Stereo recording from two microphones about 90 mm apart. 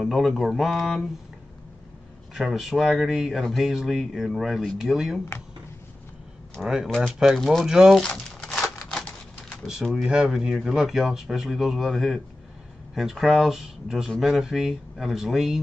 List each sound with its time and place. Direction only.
0.0 s speech: centre (ahead or behind)
2.3 s speech: 5° right (ahead or behind)
6.6 s speech: 5° right (ahead or behind)
8.0 s crumpling: 10° left (ahead or behind)
10.0 s speech: 5° right (ahead or behind)